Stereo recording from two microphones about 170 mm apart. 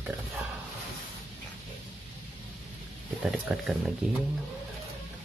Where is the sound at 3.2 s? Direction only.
Centre (ahead or behind).